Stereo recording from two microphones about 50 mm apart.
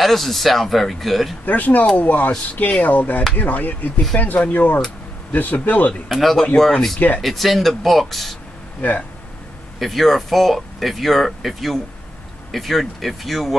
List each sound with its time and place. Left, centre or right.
0.0 s speech: centre
1.4 s speech: left
6.0 s speech: centre
8.8 s speech: left
9.8 s speech: centre